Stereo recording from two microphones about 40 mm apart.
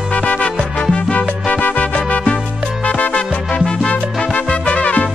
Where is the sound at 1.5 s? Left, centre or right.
Left.